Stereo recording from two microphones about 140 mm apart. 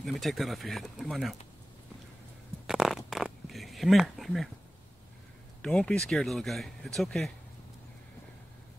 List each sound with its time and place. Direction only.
0.0 s speech: centre (ahead or behind)
2.6 s a sound: 5° right (ahead or behind)
5.6 s speech: 5° left (ahead or behind)